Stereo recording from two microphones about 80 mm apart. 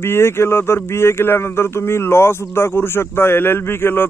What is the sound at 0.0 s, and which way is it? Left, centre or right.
Speech, left.